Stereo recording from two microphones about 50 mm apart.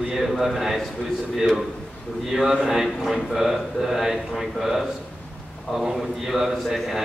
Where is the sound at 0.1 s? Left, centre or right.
Centre.